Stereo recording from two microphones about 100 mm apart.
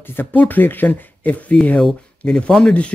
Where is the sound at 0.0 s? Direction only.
20° left (ahead or behind).